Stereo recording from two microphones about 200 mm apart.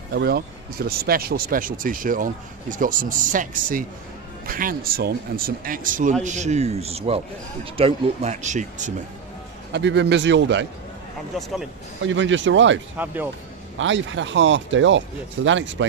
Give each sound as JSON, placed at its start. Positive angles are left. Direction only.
{"t": 0.1, "sound": "speech", "side_deg": -50}
{"t": 9.7, "sound": "a man's voice", "side_deg": -60}
{"t": 12.0, "sound": "speech", "side_deg": -70}
{"t": 12.9, "sound": "speech", "side_deg": -10}
{"t": 13.7, "sound": "speech", "side_deg": -70}